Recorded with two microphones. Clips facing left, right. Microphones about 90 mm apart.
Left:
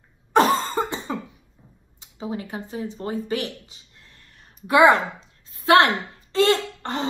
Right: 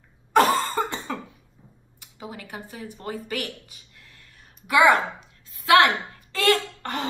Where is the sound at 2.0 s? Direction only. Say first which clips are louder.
Left 8 dB; 25° left (ahead or behind).